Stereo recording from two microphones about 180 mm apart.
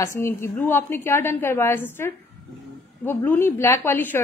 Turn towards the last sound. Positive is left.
turn(degrees=10)  # may be behind; listen again after turning